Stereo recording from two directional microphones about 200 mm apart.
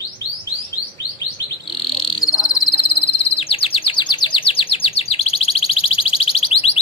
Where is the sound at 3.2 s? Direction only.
30° left (ahead or behind).